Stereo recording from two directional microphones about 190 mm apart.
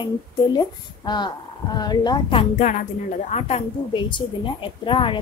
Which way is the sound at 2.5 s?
40° left (ahead or behind).